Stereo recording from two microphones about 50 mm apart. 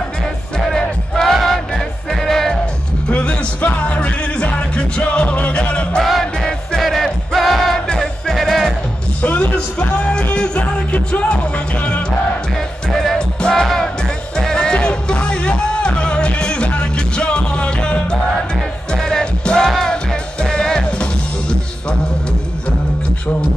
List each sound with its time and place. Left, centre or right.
0.6 s music: centre
3.1 s music: left
5.9 s music: centre
9.2 s music: left
12.9 s music: centre; by 18.0 s left
18.9 s music: centre